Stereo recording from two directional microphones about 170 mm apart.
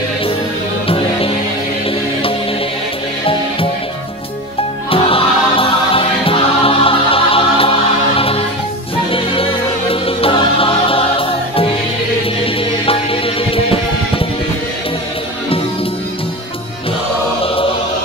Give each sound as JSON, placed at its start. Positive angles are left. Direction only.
{"t": 0.8, "sound": "music", "side_deg": 35}
{"t": 4.9, "sound": "music", "side_deg": 30}
{"t": 12.8, "sound": "music", "side_deg": 35}